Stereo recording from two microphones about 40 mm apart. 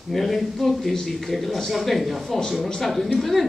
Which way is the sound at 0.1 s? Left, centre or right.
Centre.